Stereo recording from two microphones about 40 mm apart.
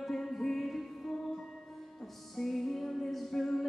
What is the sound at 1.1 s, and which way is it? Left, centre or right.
Music, centre.